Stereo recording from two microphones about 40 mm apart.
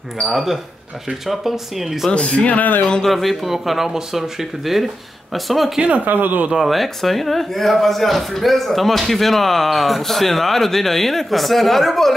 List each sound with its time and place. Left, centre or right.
0.2 s a man's voice: centre
2.0 s speech: left
3.1 s a man's voice: centre
5.8 s speech: right
6.0 s speech: right
6.6 s a man's voice: centre